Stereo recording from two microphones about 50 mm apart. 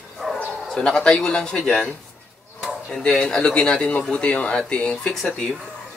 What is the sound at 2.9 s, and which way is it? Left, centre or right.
Speech, centre.